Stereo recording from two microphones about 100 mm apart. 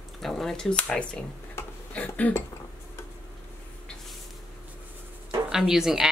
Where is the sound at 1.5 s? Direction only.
15° left (ahead or behind).